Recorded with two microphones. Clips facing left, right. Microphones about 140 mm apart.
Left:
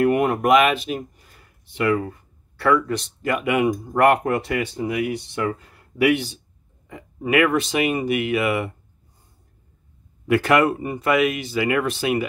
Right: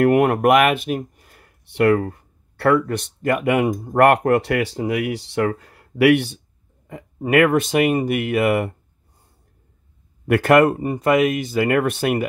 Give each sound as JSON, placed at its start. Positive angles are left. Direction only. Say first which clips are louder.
{"t": 0.0, "sound": "speech", "louder": "right 4 dB", "side_deg": -70}
{"t": 6.9, "sound": "speech", "louder": "right 3 dB", "side_deg": -45}
{"t": 10.2, "sound": "speech", "louder": "right 3 dB", "side_deg": -55}